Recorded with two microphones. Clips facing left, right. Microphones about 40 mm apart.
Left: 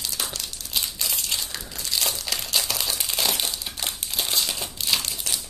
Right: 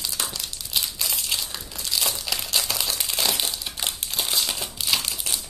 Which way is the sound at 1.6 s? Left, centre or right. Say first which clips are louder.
Even; centre.